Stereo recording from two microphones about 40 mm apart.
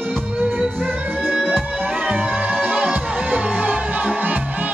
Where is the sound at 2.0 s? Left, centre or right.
Right.